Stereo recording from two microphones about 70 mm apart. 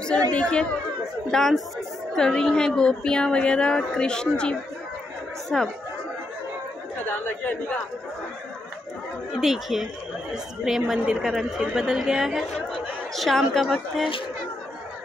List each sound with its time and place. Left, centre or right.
0.3 s speech: centre
1.3 s a woman's voice: centre
7.1 s speech: left
9.3 s a woman's voice: centre